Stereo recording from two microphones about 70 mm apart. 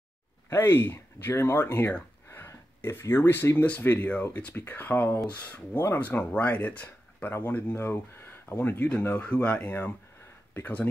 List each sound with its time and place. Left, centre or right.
0.5 s speech: left
2.3 s a sound: left
3.8 s speech: left